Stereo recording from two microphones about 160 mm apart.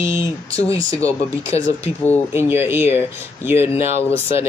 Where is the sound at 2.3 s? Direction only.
15° right (ahead or behind).